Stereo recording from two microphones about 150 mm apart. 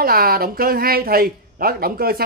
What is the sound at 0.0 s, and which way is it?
A man's voice, 85° right.